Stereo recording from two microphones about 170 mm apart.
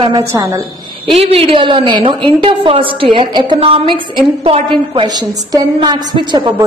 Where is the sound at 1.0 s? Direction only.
35° right (ahead or behind).